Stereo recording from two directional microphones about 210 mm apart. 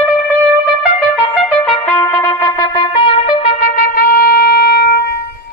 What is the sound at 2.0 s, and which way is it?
Music, 15° left (ahead or behind).